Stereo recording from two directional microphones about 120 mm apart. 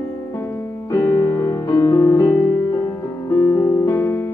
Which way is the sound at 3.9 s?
20° left (ahead or behind).